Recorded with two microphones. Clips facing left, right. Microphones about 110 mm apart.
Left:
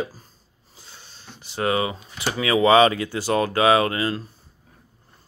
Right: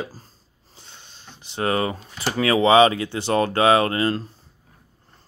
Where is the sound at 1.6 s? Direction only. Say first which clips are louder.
Even; 40° right (ahead or behind).